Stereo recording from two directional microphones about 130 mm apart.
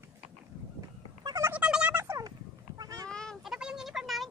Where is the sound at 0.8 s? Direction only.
25° right (ahead or behind).